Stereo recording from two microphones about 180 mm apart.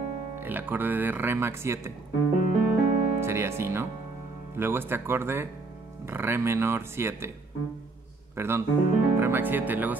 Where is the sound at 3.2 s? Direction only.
15° right (ahead or behind).